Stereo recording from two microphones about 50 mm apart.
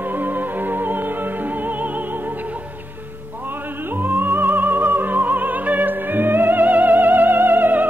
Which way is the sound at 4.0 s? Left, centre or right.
Right.